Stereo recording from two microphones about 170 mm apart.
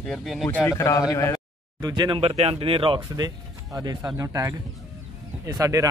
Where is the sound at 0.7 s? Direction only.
15° left (ahead or behind).